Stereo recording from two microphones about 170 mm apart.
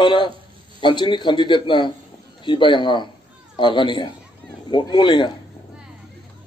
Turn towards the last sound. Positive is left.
turn(degrees=25)  # may be behind; listen again after turning